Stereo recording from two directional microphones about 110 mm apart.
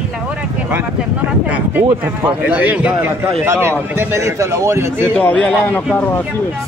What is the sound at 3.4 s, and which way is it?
A man's voice, 20° right (ahead or behind).